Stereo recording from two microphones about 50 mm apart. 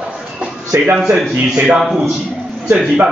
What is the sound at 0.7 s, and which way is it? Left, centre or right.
Speech, right.